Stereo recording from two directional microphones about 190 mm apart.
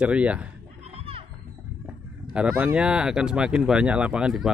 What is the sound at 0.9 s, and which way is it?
Children playing, 30° right (ahead or behind).